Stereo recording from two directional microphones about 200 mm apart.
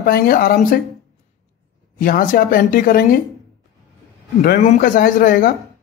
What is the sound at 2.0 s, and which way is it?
Speech, 45° left (ahead or behind).